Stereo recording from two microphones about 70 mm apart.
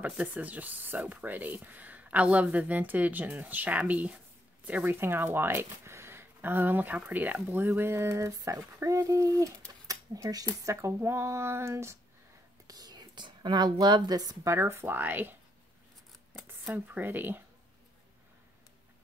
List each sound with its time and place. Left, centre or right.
0.0 s speech: right
9.8 s a sound: right
10.6 s speech: right
12.6 s speech: right
14.4 s speech: right
16.7 s speech: right